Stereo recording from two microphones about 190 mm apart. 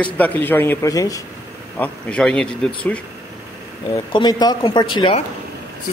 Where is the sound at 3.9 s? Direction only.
20° left (ahead or behind).